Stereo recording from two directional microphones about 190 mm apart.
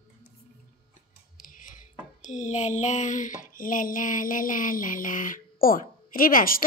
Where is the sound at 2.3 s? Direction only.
40° left (ahead or behind).